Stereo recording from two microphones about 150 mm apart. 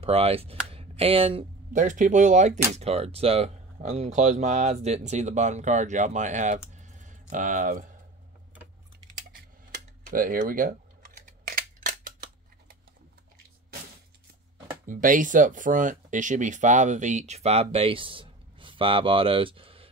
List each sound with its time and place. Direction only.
0.0 s speech: 40° right (ahead or behind)
1.7 s speech: 60° right (ahead or behind)
10.0 s camera: 65° right (ahead or behind)
14.9 s speech: 60° right (ahead or behind); by 19.9 s 35° right (ahead or behind)